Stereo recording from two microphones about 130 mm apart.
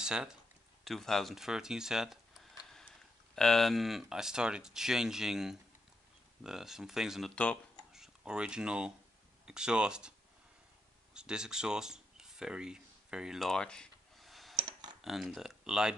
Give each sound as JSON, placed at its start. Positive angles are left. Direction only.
{"t": 0.0, "sound": "speech", "side_deg": -5}
{"t": 3.3, "sound": "speech", "side_deg": 5}
{"t": 11.1, "sound": "a sound", "side_deg": -5}
{"t": 14.6, "sound": "computer keyboard", "side_deg": -35}
{"t": 15.0, "sound": "speech", "side_deg": 0}